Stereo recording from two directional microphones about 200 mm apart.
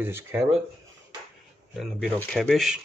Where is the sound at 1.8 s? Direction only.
Centre (ahead or behind).